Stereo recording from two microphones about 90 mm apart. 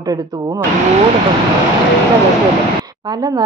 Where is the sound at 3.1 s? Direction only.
45° right (ahead or behind).